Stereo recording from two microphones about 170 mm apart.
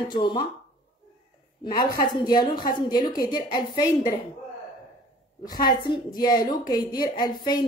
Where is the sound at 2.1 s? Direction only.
25° left (ahead or behind).